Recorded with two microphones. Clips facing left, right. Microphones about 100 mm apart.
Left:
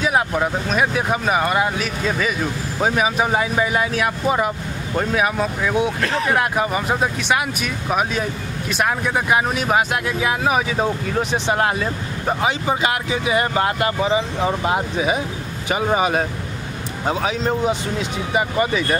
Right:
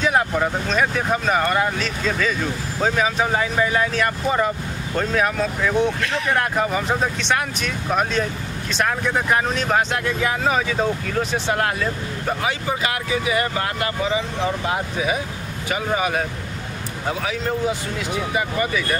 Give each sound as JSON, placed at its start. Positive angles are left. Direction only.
{"t": 0.0, "sound": "speech", "side_deg": 5}
{"t": 6.0, "sound": "speech", "side_deg": 35}
{"t": 6.3, "sound": "speech", "side_deg": 10}